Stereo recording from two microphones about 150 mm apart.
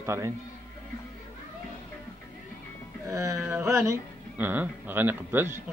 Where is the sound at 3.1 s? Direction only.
20° right (ahead or behind).